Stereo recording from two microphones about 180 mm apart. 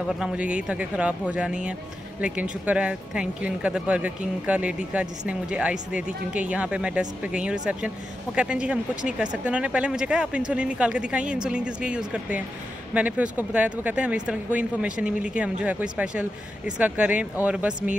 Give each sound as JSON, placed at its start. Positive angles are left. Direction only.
{"t": 0.1, "sound": "speech", "side_deg": -5}